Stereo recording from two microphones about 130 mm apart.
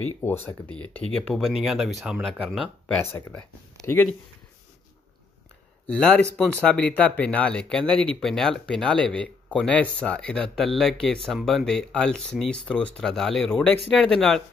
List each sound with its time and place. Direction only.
0.2 s speech: 20° left (ahead or behind); by 2.3 s 5° right (ahead or behind)
2.9 s speech: 20° left (ahead or behind)
5.9 s speech: 5° left (ahead or behind)